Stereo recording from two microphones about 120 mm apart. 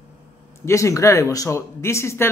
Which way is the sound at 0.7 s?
25° left (ahead or behind).